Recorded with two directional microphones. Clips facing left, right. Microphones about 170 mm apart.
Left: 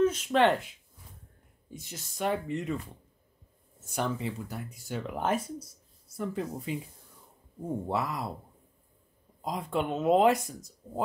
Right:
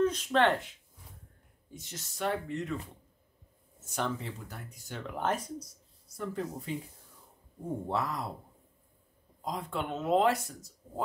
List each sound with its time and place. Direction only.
0.0 s speech: 10° left (ahead or behind)
1.7 s speech: 10° left (ahead or behind)
3.8 s speech: 10° left (ahead or behind)
7.9 s speech: 5° left (ahead or behind)
9.4 s speech: 15° left (ahead or behind)